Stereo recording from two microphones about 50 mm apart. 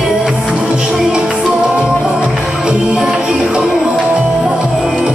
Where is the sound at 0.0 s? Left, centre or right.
Centre.